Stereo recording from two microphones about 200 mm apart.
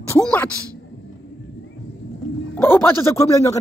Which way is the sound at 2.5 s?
10° left (ahead or behind).